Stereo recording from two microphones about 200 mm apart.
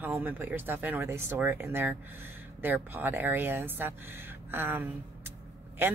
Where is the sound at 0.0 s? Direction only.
10° right (ahead or behind).